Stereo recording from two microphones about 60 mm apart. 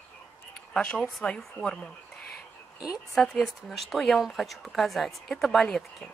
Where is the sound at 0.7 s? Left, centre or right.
Centre.